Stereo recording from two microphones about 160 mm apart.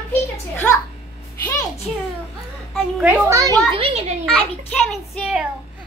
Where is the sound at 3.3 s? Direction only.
20° right (ahead or behind).